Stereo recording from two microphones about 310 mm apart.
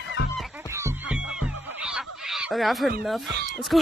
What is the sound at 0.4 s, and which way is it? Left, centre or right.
Fowl, centre.